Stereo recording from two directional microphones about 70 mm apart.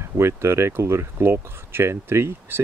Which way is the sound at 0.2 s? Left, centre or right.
Right.